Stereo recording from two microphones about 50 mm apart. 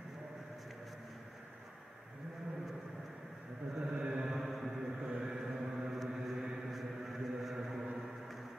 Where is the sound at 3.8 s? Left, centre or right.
Centre.